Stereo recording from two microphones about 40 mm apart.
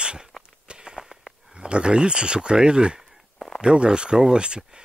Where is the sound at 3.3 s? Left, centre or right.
Centre.